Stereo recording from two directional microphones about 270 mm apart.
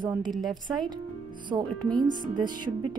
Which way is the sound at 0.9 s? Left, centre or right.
Centre.